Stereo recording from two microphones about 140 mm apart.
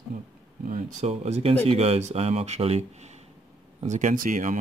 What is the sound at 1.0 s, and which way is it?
Speech, 45° right (ahead or behind).